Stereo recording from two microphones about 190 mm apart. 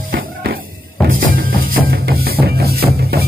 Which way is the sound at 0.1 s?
55° right (ahead or behind).